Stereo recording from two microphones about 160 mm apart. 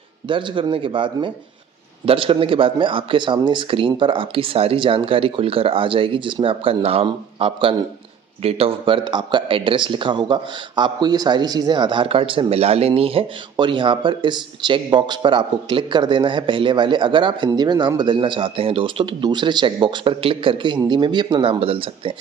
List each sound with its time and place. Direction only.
0.3 s a man's voice: 30° right (ahead or behind)